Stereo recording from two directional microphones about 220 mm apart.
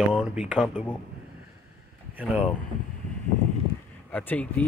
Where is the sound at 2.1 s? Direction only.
5° right (ahead or behind).